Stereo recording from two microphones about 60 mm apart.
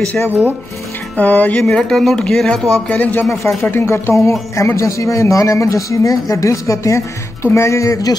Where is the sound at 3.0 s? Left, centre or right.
Left.